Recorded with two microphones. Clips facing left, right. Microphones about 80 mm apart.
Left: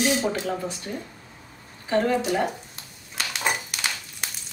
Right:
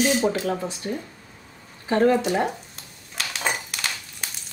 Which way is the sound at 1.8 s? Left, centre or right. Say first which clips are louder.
Right 4 dB; right.